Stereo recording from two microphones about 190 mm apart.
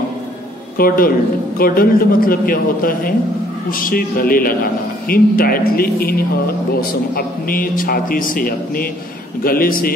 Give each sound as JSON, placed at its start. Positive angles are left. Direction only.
{"t": 0.7, "sound": "speech", "side_deg": 50}